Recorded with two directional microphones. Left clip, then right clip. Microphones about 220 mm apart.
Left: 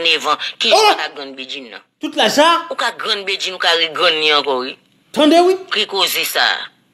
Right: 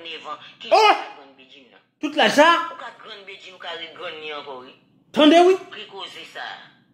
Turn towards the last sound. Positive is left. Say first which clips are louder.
# left 19 dB
turn(degrees=45)  # may be behind; listen again after turning